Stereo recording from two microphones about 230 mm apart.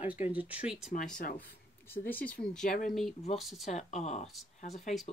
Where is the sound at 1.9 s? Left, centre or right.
Centre.